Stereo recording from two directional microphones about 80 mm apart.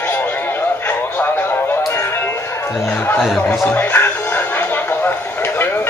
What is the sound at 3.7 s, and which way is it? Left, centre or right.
Speech, left.